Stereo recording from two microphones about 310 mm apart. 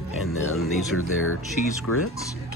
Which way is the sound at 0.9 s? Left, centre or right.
Left.